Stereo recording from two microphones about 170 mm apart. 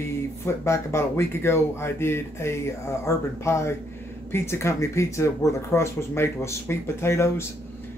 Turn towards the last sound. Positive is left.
turn(degrees=15)  # may be behind; listen again after turning